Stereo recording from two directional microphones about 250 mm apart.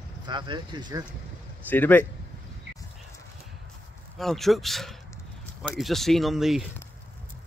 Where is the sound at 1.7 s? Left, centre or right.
Centre.